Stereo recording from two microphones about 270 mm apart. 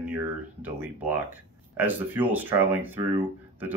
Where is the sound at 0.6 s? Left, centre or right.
Centre.